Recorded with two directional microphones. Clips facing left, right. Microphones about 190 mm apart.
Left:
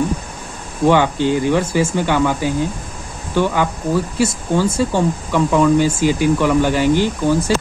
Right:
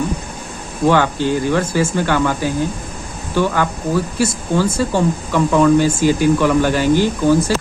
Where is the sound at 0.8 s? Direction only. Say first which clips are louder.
Left 1 dB; 15° left (ahead or behind).